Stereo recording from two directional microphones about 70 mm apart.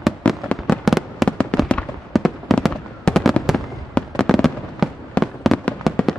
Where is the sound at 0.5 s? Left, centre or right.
Centre.